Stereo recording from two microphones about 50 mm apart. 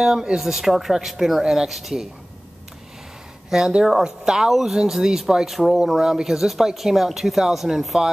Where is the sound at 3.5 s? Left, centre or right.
Centre.